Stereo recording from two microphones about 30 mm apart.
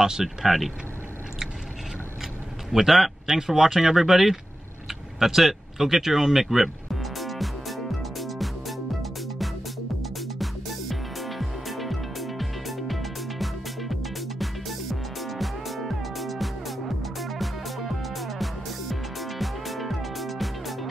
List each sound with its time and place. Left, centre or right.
0.0 s speech: centre
2.7 s a man's voice: centre
3.3 s speech: right
3.5 s speech: centre
6.9 s music: centre